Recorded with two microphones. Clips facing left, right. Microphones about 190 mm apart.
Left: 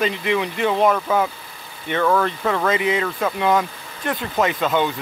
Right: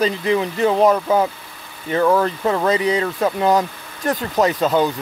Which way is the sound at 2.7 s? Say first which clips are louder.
Right 2 dB; 35° right (ahead or behind).